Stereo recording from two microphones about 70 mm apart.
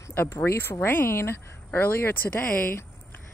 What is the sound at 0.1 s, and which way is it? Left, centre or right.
Speech, left.